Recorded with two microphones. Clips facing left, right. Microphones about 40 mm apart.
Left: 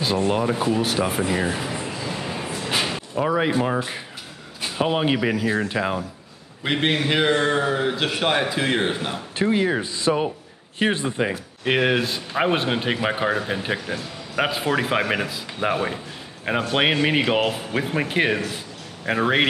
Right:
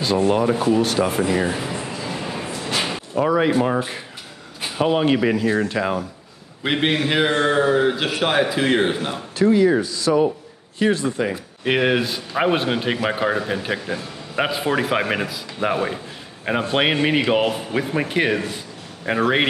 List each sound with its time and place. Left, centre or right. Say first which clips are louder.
0.0 s a sound: right 3 dB; centre
4.7 s a man's voice: right 3 dB; centre
9.4 s speech: right 5 dB; left
11.6 s a man's voice: right 1 dB; centre